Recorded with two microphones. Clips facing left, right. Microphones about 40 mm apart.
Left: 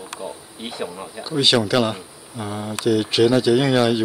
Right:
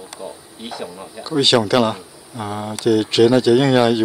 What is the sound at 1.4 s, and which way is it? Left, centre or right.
Speech, centre.